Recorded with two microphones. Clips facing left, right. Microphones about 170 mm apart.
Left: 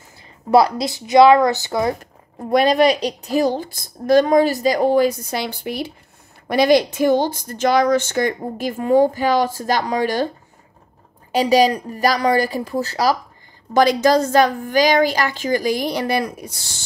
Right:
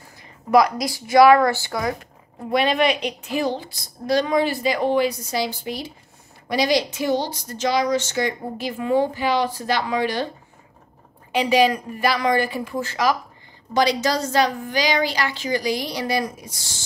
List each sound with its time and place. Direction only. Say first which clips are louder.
0.5 s speech: left 2 dB; 30° left (ahead or behind)
2.5 s speech: left 5 dB; 40° left (ahead or behind)
11.3 s a woman's voice: left 3 dB; 40° left (ahead or behind)
13.7 s speech: left 6 dB; 50° left (ahead or behind)